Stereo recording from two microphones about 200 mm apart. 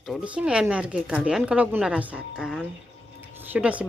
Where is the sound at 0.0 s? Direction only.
5° right (ahead or behind).